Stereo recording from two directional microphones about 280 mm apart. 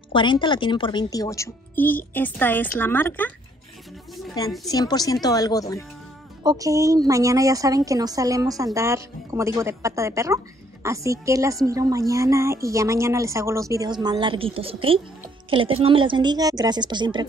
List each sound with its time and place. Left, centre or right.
0.1 s a woman's voice: centre
4.6 s a woman's voice: centre
6.4 s a woman's voice: centre